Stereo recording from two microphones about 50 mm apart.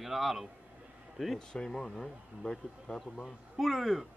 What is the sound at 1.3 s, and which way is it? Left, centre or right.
Speech, centre.